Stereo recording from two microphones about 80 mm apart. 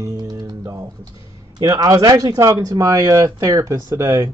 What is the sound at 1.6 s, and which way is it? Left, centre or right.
Speech, right.